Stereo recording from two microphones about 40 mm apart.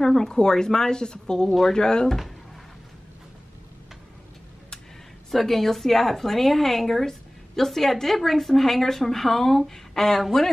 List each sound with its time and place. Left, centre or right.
0.0 s speech: centre
5.3 s a woman's voice: centre